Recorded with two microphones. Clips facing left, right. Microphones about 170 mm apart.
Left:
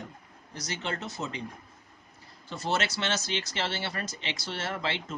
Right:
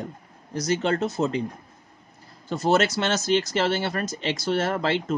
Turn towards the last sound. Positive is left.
turn(degrees=-50)  # may be behind; listen again after turning